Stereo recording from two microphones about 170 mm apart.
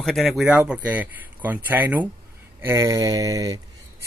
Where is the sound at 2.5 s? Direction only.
15° right (ahead or behind).